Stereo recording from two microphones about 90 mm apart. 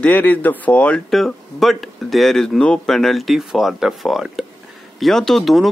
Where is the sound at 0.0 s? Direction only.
20° left (ahead or behind).